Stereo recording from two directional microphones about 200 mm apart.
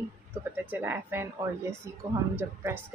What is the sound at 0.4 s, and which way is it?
Speech, 10° right (ahead or behind).